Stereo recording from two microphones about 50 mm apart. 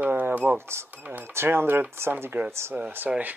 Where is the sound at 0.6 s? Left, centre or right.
Right.